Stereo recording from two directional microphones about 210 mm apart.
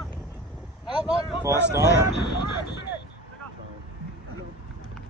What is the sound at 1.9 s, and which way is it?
Speech, 55° left (ahead or behind).